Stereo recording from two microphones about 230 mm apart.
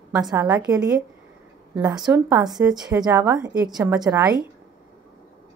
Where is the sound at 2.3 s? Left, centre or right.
Centre.